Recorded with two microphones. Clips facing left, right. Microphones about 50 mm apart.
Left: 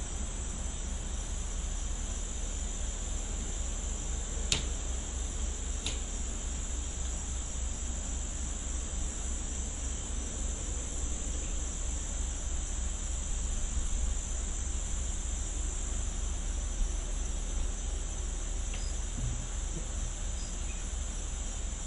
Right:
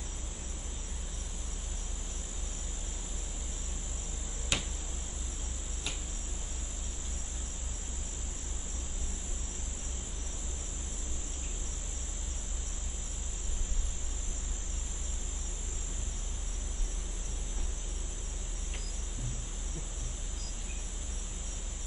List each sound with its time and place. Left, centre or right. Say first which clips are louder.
4.5 s cricket: right 2 dB; right